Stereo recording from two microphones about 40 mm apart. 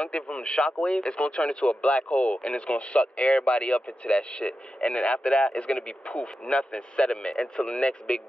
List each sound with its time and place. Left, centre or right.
0.0 s speech: left